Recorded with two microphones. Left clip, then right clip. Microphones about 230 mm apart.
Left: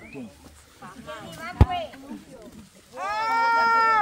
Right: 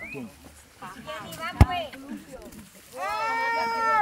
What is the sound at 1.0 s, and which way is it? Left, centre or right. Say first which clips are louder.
Speech: right 2 dB; right.